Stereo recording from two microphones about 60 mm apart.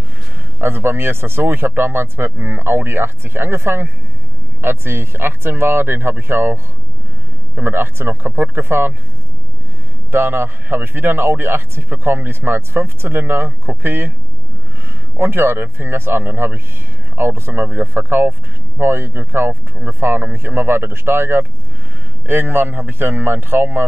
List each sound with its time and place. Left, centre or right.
0.6 s speech: right
10.1 s speech: right
15.1 s speech: right